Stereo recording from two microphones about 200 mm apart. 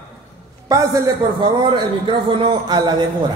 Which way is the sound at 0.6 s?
15° right (ahead or behind).